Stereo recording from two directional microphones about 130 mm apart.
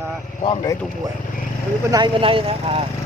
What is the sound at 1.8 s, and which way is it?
Speech, 35° right (ahead or behind).